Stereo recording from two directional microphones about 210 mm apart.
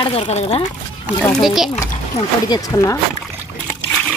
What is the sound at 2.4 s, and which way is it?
Speech, 20° left (ahead or behind).